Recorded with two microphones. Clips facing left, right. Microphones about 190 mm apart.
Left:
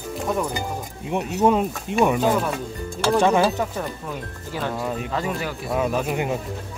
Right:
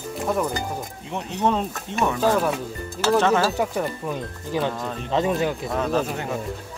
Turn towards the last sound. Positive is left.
turn(degrees=10)  # may be behind; listen again after turning